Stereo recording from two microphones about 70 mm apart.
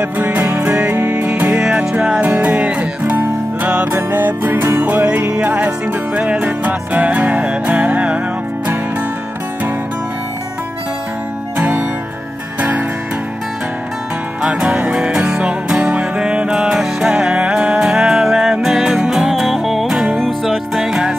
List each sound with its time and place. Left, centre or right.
0.0 s music: right
4.8 s music: right
12.5 s music: centre
14.4 s music: centre